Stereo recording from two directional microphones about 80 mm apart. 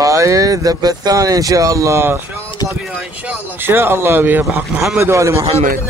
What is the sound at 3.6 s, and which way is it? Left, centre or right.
Speech, right.